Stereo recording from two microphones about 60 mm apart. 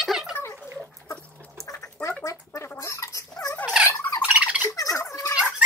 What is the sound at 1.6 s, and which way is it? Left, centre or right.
Duck, left.